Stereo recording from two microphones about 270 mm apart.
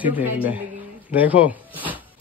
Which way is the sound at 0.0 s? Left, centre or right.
Centre.